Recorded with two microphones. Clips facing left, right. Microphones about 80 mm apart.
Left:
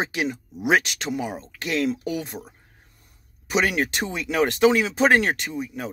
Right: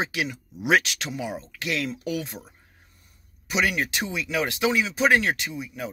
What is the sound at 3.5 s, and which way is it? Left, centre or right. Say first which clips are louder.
Speech: left 3 dB; left.